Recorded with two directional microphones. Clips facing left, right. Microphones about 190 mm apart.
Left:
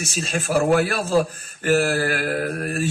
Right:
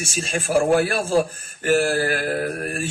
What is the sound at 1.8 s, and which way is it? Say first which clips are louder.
Mantra: even; 35° right (ahead or behind).